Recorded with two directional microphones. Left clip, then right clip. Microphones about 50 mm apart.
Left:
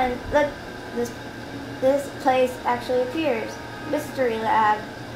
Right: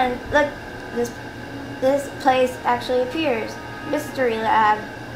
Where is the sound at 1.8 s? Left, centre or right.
Centre.